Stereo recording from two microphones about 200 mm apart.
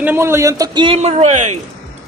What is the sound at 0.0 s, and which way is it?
A man's voice, 10° right (ahead or behind).